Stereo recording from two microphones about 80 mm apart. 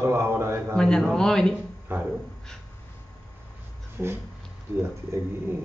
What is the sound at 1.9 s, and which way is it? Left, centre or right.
Speech, right.